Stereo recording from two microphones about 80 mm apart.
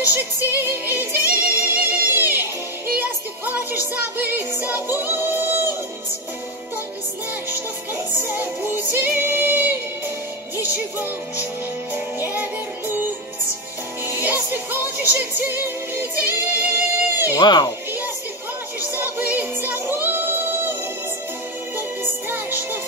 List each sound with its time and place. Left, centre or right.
0.1 s music: right
7.4 s music: right
11.9 s music: right
14.0 s music: right
17.4 s a child's voice: left
18.9 s music: right
22.3 s music: right